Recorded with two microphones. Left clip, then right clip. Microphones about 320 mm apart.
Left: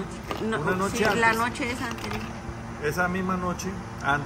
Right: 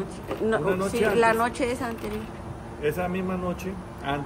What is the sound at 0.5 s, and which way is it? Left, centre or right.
Speech, centre.